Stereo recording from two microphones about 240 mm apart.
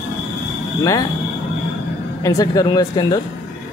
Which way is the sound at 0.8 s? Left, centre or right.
Centre.